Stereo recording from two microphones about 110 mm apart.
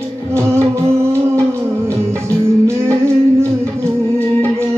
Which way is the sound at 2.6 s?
25° right (ahead or behind).